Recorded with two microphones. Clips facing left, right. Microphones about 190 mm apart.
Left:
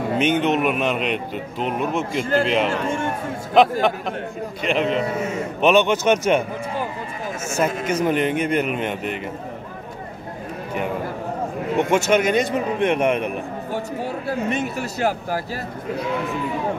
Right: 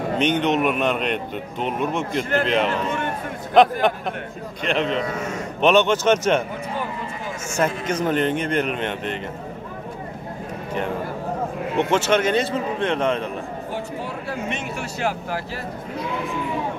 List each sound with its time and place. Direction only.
0.2 s speech: 5° left (ahead or behind)
7.5 s speech: 10° left (ahead or behind)
11.9 s speech: 10° left (ahead or behind)
14.0 s speech: 40° left (ahead or behind)